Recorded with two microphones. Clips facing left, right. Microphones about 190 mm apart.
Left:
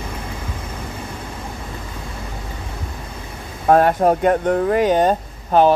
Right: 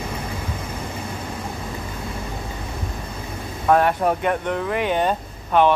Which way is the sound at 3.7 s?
40° left (ahead or behind).